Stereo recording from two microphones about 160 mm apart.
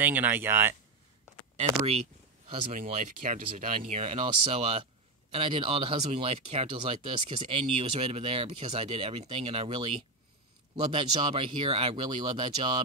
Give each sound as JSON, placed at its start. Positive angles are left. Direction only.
{"t": 0.0, "sound": "speech", "side_deg": -10}
{"t": 1.9, "sound": "speech", "side_deg": -45}